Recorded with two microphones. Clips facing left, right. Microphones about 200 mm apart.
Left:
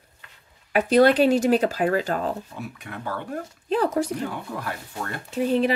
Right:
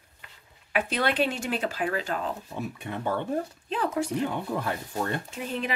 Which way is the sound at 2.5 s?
20° right (ahead or behind).